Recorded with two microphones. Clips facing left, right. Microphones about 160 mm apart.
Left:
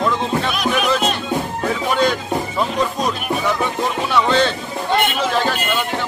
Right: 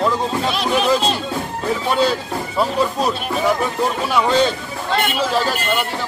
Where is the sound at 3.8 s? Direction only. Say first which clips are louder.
Even; 10° right (ahead or behind).